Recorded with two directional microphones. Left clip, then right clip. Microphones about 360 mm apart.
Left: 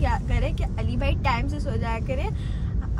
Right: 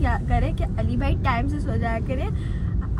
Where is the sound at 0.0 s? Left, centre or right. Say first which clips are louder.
Right 2 dB; left.